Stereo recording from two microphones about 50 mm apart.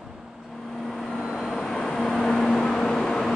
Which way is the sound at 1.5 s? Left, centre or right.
Centre.